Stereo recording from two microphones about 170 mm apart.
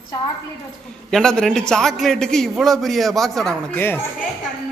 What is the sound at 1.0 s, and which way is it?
A man's voice, 5° left (ahead or behind).